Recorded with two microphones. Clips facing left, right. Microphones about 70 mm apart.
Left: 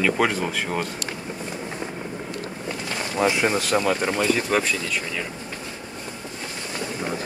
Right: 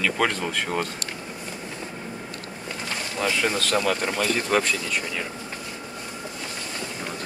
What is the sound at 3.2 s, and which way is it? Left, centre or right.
Speech, left.